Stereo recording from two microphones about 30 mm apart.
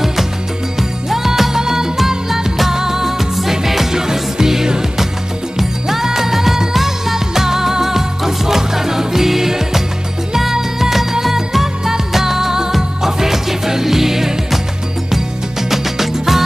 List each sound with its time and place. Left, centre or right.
0.0 s music: centre
15.7 s music: centre